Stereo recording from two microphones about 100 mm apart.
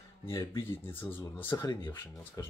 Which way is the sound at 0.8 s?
20° left (ahead or behind).